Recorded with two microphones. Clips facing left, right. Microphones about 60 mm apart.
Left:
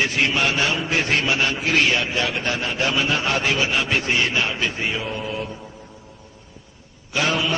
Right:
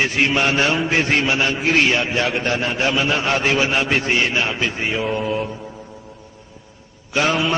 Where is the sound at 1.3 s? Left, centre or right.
Centre.